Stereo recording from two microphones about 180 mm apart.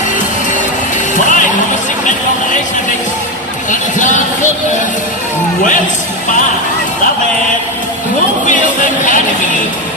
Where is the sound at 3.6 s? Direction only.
45° left (ahead or behind).